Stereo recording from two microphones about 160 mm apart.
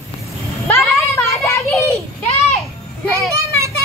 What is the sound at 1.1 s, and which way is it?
Children playing, 15° left (ahead or behind).